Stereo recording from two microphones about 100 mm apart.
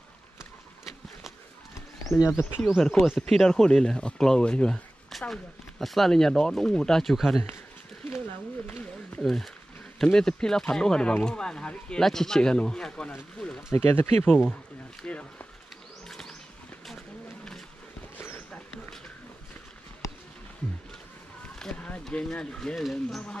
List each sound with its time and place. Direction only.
2.1 s speech: 5° right (ahead or behind)
2.6 s speech: 5° left (ahead or behind)
8.6 s a sound: 15° left (ahead or behind)
9.2 s speech: 5° left (ahead or behind)
13.7 s speech: 25° left (ahead or behind)
15.0 s speech: 15° left (ahead or behind)
16.1 s bird: 5° left (ahead or behind)
18.1 s a sound: 25° left (ahead or behind)
21.5 s speech: 10° left (ahead or behind)